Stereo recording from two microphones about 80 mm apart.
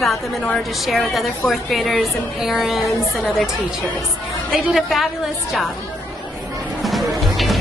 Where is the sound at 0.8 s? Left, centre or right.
Centre.